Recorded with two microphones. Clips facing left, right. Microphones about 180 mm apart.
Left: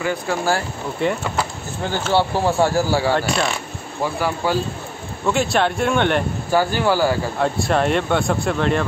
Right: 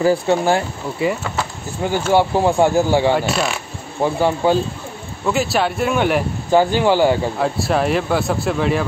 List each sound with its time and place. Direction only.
0.0 s speech: 30° right (ahead or behind)
0.9 s speech: 5° right (ahead or behind)
1.9 s speech: 15° right (ahead or behind)
3.2 s speech: 5° right (ahead or behind)
4.0 s speech: 25° right (ahead or behind)
5.2 s speech: centre (ahead or behind)
6.5 s speech: 20° right (ahead or behind)
7.3 s speech: centre (ahead or behind)